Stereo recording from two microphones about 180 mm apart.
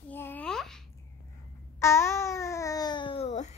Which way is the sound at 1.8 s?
15° left (ahead or behind).